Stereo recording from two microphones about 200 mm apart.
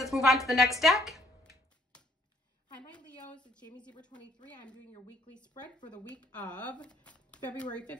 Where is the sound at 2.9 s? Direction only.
5° left (ahead or behind).